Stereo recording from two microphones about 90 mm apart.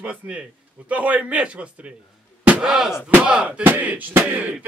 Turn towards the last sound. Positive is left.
turn(degrees=-15)  # may be behind; listen again after turning